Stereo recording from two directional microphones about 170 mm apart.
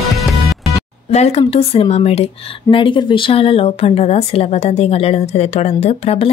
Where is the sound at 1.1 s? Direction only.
40° left (ahead or behind).